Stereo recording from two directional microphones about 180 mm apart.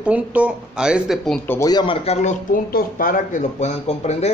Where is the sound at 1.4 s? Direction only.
15° left (ahead or behind).